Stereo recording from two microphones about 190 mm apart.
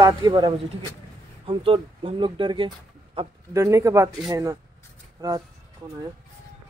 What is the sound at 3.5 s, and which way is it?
A man's voice, 15° right (ahead or behind).